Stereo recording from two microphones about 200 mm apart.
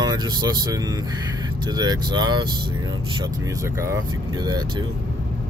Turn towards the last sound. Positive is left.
turn(degrees=-20)  # may be behind; listen again after turning